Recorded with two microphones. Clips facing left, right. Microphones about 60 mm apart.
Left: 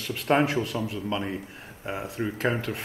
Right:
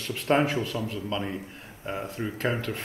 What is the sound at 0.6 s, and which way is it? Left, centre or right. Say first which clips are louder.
Speech: left 1 dB; left.